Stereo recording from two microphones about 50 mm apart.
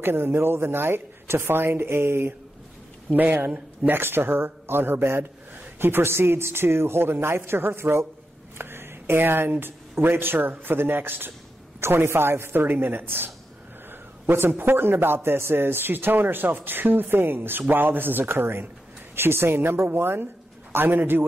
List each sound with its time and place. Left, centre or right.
0.0 s a man's voice: right
3.1 s a man's voice: right
11.8 s a man's voice: right